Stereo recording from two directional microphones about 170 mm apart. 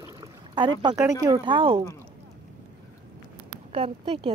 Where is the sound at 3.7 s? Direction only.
35° right (ahead or behind).